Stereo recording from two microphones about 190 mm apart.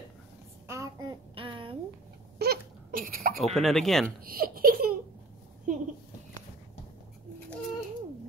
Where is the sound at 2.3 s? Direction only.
55° right (ahead or behind).